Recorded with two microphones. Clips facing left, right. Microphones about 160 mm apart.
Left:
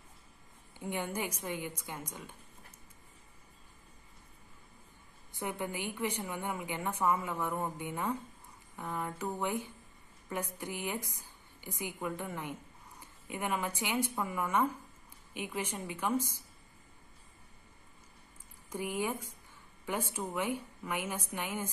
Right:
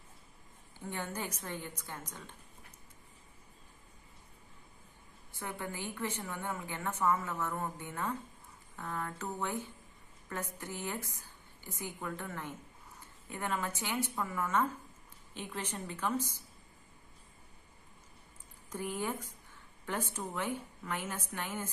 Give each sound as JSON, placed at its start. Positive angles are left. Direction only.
{"t": 0.7, "sound": "a woman's voice", "side_deg": 15}
{"t": 5.3, "sound": "a woman's voice", "side_deg": 20}
{"t": 18.7, "sound": "a woman's voice", "side_deg": 10}